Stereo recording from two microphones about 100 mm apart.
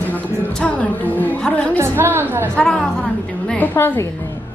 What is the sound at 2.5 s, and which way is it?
A woman's voice, 10° left (ahead or behind).